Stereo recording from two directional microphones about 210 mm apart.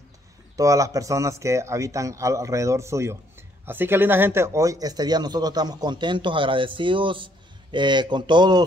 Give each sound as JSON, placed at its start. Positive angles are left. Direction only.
{"t": 0.6, "sound": "speech", "side_deg": -15}